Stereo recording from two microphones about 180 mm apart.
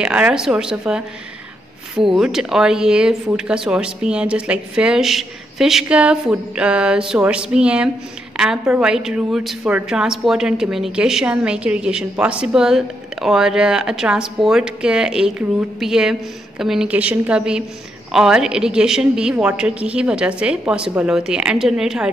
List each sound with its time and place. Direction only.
0.0 s a woman's voice: 5° right (ahead or behind)
2.0 s a woman's voice: centre (ahead or behind)